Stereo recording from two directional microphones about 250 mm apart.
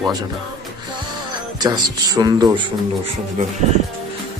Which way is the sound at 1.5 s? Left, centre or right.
Centre.